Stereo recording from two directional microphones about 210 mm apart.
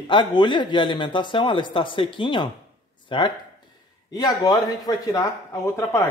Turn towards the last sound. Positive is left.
turn(degrees=15)  # may be behind; listen again after turning